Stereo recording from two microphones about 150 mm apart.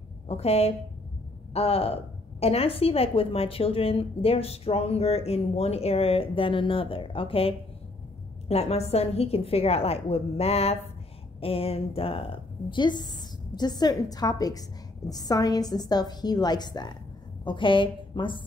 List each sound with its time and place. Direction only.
0.3 s a woman's voice: 40° left (ahead or behind)